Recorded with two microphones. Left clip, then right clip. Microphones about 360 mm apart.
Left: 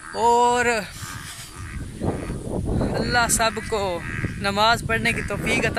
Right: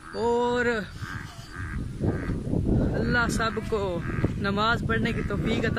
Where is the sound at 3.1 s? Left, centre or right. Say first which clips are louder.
Left 6 dB; centre.